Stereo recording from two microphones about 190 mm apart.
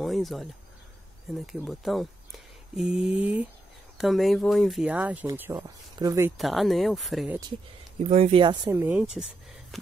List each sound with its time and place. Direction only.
0.0 s a sound: centre (ahead or behind)
1.4 s speech: centre (ahead or behind); by 6.3 s 15° right (ahead or behind)
6.3 s speech: centre (ahead or behind)
8.1 s speech: 30° right (ahead or behind)
8.7 s speech: 10° right (ahead or behind)